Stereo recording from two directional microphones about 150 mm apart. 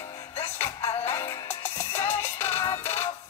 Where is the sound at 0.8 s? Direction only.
40° left (ahead or behind).